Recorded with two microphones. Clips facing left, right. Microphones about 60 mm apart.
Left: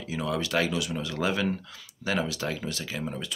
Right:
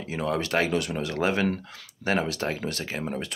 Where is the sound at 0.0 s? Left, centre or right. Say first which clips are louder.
Right 2 dB; right.